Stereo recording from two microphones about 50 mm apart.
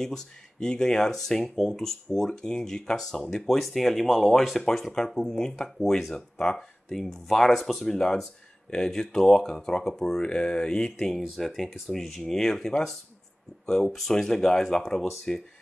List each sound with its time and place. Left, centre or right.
0.0 s speech: centre